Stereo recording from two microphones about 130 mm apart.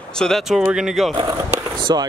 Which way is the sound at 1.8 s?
35° right (ahead or behind).